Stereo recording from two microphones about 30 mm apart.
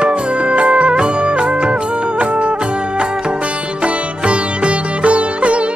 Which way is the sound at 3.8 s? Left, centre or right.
Right.